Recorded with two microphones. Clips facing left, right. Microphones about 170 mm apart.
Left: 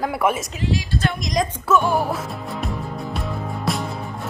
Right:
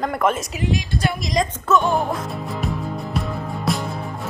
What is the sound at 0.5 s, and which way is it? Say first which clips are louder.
Speech: right 1 dB; 20° right (ahead or behind).